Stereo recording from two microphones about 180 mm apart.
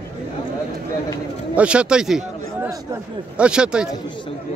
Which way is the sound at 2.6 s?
15° right (ahead or behind).